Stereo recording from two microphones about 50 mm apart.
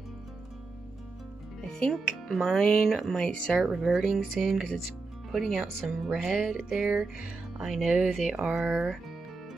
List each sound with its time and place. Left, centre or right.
1.7 s speech: centre
3.2 s speech: centre
3.7 s music: centre
5.3 s speech: centre
6.1 s music: centre